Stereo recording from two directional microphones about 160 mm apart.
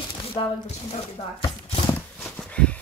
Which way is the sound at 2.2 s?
5° left (ahead or behind).